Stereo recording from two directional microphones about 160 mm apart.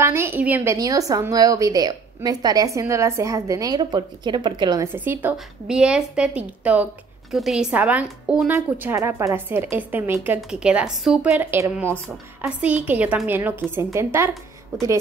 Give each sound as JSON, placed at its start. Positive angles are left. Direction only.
{"t": 0.0, "sound": "a woman's voice", "side_deg": -15}